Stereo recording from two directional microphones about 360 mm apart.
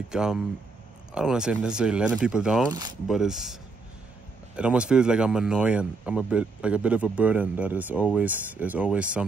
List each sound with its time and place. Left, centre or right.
0.1 s speech: centre
4.6 s speech: centre